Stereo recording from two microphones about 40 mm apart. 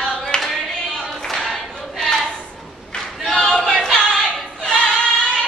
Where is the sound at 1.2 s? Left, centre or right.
Centre.